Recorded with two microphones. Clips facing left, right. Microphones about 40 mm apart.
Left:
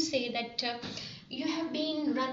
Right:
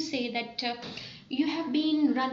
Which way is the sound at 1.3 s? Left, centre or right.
Centre.